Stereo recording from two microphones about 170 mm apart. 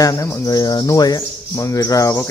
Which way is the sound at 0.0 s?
20° left (ahead or behind).